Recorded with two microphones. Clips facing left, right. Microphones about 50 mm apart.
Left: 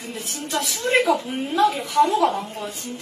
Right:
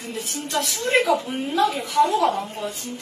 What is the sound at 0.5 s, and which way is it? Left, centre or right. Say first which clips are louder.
A woman's voice: left 1 dB; centre.